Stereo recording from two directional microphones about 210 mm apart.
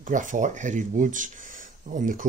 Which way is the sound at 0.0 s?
35° right (ahead or behind).